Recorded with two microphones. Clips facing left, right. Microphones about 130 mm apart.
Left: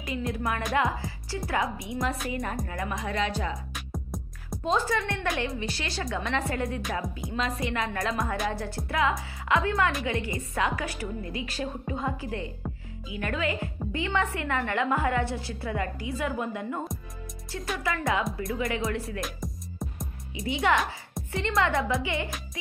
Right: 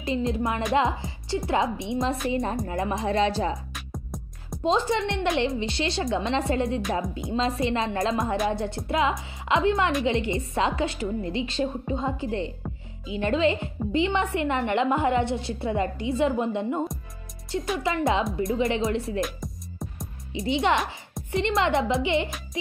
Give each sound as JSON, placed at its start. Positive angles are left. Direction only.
{"t": 0.0, "sound": "a woman's voice", "side_deg": -25}
{"t": 3.7, "sound": "music", "side_deg": 0}
{"t": 4.6, "sound": "a woman's voice", "side_deg": -25}
{"t": 19.2, "sound": "music", "side_deg": 0}
{"t": 20.3, "sound": "a woman's voice", "side_deg": -25}